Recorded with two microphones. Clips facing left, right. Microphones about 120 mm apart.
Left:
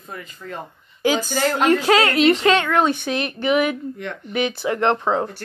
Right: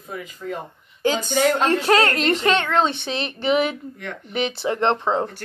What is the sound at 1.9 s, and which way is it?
Speech, 10° left (ahead or behind).